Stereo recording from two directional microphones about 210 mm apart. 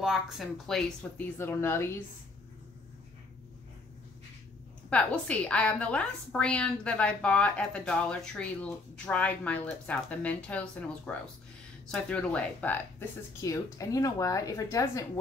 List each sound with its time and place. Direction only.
0.0 s a woman's voice: centre (ahead or behind)
4.8 s a woman's voice: 5° left (ahead or behind)